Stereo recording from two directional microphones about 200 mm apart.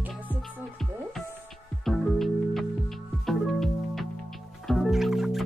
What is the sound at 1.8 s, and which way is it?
Music, centre (ahead or behind).